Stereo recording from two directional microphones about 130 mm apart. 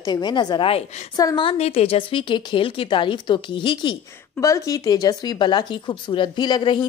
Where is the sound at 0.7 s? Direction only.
50° left (ahead or behind).